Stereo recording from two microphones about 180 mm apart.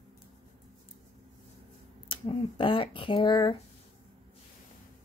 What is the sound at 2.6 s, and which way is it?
Speech, 30° left (ahead or behind).